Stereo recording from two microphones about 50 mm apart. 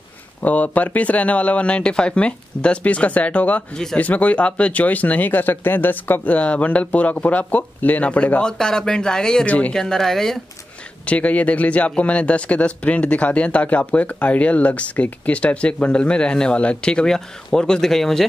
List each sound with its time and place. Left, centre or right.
0.4 s speech: left
8.4 s speech: centre
9.5 s speech: left
9.8 s speech: centre
11.1 s speech: left; by 18.2 s centre